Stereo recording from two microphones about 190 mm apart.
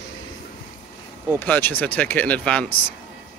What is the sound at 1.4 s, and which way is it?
Speech, 10° left (ahead or behind).